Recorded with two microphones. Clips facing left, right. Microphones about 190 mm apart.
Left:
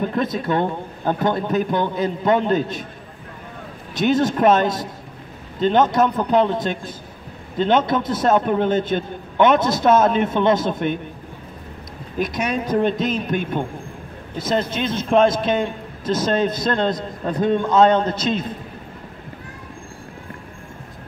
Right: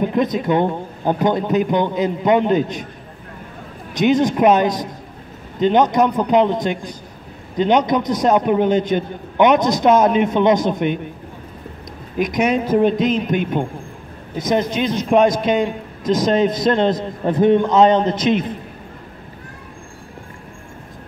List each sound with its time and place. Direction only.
0.0 s a man's voice: 15° right (ahead or behind)
3.9 s a man's voice: 15° right (ahead or behind)
12.2 s a man's voice: 20° right (ahead or behind)